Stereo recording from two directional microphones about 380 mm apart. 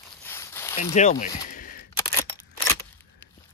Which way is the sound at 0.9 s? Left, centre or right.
Centre.